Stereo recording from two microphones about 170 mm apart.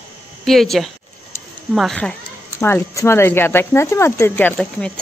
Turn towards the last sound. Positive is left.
turn(degrees=5)  # may be behind; listen again after turning